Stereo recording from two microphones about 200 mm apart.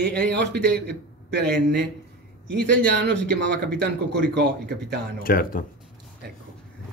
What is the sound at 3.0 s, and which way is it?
Speech, 60° right (ahead or behind).